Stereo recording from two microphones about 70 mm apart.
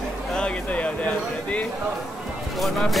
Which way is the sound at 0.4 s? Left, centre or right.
Centre.